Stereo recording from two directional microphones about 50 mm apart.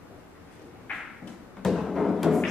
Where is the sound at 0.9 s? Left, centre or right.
Left.